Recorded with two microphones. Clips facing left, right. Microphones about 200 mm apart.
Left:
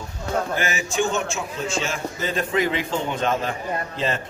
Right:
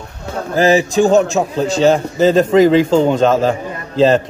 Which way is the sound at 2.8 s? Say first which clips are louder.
Right 13 dB; 90° right.